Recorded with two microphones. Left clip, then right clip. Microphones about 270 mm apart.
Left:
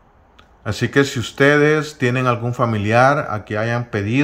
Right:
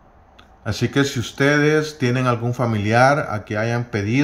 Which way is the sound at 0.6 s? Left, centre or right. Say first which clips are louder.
Left 3 dB; centre.